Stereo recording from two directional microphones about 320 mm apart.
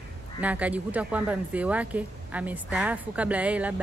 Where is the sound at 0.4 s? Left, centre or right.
Centre.